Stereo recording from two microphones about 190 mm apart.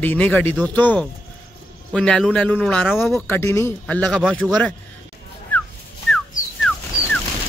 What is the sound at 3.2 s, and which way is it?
A man's voice, 15° left (ahead or behind).